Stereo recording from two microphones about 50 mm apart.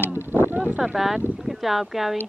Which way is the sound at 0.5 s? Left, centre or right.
Right.